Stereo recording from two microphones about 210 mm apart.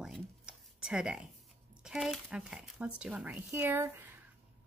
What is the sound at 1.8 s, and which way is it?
A woman's voice, 5° right (ahead or behind).